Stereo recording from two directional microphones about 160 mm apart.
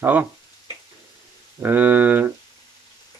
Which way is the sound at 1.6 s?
10° right (ahead or behind).